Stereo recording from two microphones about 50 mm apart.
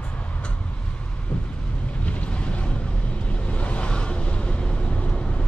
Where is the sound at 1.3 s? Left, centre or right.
Left.